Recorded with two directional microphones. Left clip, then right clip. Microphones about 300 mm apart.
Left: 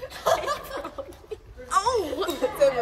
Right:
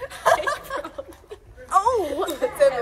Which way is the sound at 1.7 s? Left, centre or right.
Centre.